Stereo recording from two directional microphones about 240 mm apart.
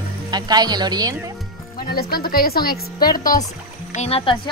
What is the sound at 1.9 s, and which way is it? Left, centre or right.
A woman's voice, left.